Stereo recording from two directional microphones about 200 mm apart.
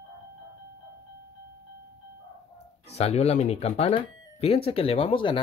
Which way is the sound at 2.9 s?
30° left (ahead or behind).